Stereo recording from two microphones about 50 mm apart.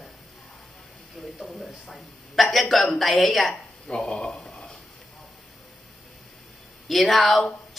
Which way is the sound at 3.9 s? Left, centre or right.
Left.